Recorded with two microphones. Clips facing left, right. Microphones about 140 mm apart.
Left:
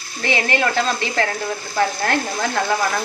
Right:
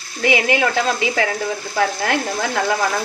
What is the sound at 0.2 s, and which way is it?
Speech, 10° right (ahead or behind).